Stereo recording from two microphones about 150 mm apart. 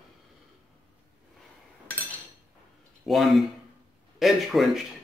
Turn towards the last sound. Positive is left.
turn(degrees=0)  # may be behind; listen again after turning